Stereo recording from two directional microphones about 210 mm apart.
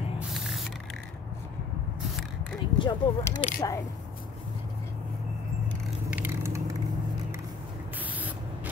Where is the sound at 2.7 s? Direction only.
20° left (ahead or behind).